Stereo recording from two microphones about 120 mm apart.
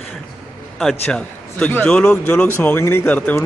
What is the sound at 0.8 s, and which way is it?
Speech, 5° left (ahead or behind).